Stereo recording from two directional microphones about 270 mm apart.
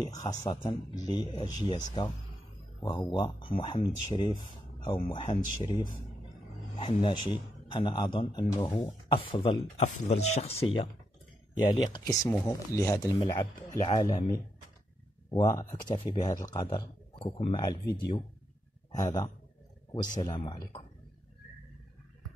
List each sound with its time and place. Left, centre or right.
0.1 s speech: centre
1.8 s speech: left
2.8 s speech: centre
15.5 s speech: centre